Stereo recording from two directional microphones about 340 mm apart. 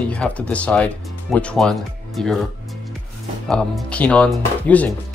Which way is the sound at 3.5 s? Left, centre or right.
Centre.